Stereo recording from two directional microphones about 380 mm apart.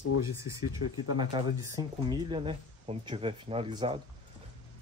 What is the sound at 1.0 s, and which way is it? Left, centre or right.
Speech, centre.